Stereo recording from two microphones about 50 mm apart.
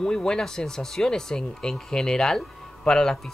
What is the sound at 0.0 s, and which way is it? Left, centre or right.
Speech, centre.